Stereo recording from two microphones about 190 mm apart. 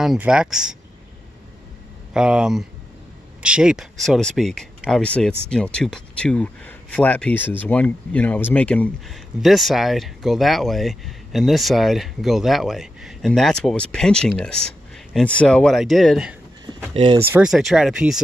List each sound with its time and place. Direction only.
0.0 s speech: 5° right (ahead or behind)
2.1 s speech: 5° right (ahead or behind)
16.6 s vehicle: 25° right (ahead or behind)
17.3 s speech: 5° right (ahead or behind)